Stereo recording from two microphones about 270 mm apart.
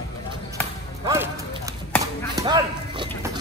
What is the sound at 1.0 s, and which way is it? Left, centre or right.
Music, centre.